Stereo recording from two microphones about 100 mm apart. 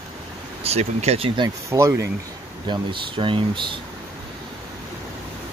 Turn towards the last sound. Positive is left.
turn(degrees=-55)  # may be behind; listen again after turning